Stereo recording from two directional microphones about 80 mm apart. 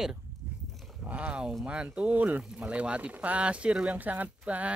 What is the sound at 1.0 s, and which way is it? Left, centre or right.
Speech, centre.